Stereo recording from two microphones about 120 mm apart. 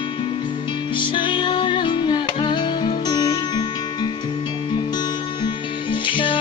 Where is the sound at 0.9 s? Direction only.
40° left (ahead or behind).